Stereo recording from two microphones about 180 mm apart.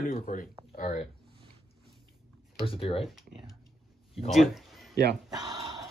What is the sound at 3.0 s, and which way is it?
Speech, centre (ahead or behind).